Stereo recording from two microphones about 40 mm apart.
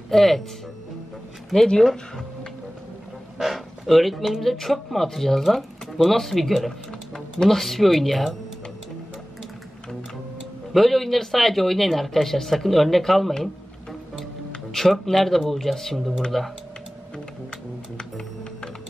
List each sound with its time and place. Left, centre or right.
0.1 s speech: centre
1.8 s speech: centre
3.3 s speech: centre
10.7 s speech: centre
14.7 s speech: centre
17.5 s music: centre